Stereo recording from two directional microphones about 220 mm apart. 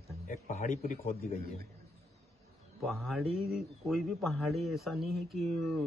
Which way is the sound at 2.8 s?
Centre (ahead or behind).